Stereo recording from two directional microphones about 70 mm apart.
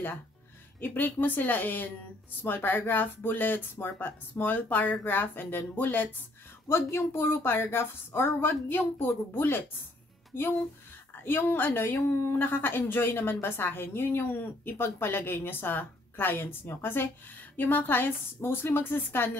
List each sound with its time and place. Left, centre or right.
0.7 s speech: left
6.7 s a woman's voice: left